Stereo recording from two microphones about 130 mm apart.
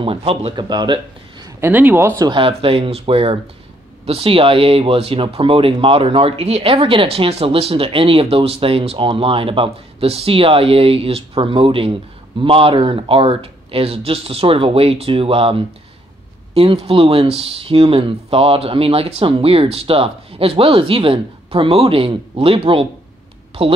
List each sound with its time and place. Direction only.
0.0 s speech: 45° right (ahead or behind)
0.7 s speech: 35° right (ahead or behind)
1.6 s speech: 15° right (ahead or behind)
2.2 s speech: 40° right (ahead or behind)